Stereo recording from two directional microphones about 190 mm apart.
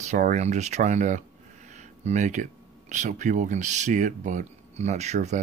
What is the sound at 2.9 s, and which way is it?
Speech, 40° right (ahead or behind).